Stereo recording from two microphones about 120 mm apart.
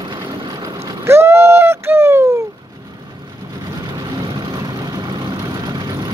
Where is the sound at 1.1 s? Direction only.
20° right (ahead or behind).